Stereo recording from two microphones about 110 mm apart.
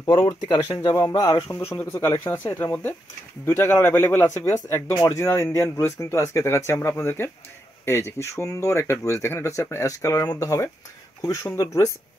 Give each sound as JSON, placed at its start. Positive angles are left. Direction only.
{"t": 0.1, "sound": "speech", "side_deg": 55}
{"t": 0.8, "sound": "speech", "side_deg": 35}
{"t": 1.8, "sound": "speech", "side_deg": 20}
{"t": 4.3, "sound": "speech", "side_deg": 30}